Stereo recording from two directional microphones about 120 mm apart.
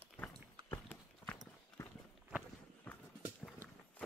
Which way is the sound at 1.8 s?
25° left (ahead or behind).